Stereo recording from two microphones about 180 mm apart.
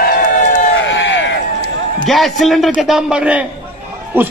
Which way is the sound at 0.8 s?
85° left.